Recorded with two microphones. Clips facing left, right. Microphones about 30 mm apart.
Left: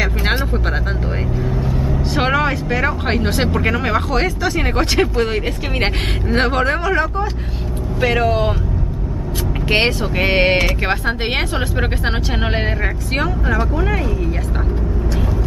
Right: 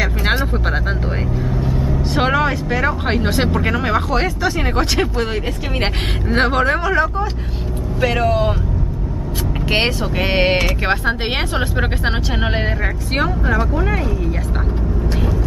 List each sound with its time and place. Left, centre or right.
0.0 s vehicle: centre
3.3 s speech: centre
9.7 s speech: centre